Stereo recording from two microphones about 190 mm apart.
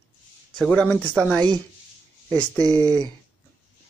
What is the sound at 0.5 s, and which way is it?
Speech, 5° left (ahead or behind).